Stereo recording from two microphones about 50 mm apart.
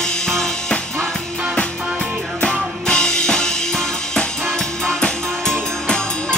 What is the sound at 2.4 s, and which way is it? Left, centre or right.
Music, centre.